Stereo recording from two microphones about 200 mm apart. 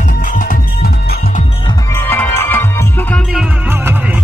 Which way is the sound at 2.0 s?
10° left (ahead or behind).